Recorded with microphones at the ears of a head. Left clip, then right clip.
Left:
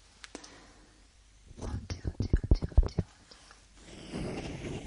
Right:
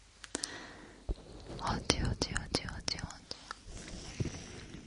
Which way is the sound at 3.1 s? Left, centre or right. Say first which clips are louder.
Right 9 dB; right.